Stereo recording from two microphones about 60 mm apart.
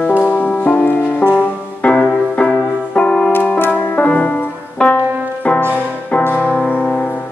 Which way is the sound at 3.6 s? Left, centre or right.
Left.